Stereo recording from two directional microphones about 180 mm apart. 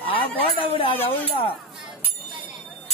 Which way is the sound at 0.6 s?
30° left (ahead or behind).